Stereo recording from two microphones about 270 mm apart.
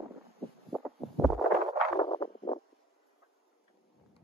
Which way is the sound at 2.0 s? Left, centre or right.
Centre.